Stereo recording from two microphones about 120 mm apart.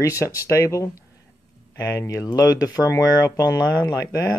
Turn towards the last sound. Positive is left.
turn(degrees=30)  # may be behind; listen again after turning